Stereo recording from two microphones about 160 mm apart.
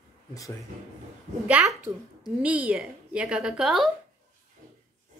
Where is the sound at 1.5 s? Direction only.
5° right (ahead or behind).